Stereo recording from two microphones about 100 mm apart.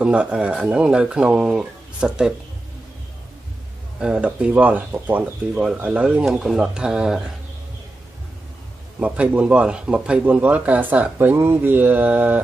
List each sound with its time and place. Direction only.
0.0 s speech: 10° right (ahead or behind)
4.0 s speech: 10° right (ahead or behind)
5.5 s speech: 5° right (ahead or behind)
9.0 s speech: 10° right (ahead or behind)